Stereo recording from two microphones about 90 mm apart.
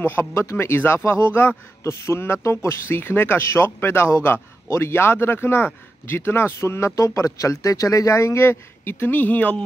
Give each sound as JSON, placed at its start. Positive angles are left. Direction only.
{"t": 0.0, "sound": "speech", "side_deg": 30}